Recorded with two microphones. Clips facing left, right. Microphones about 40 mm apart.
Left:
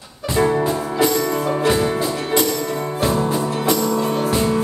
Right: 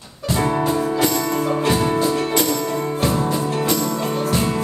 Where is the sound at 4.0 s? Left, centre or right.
Centre.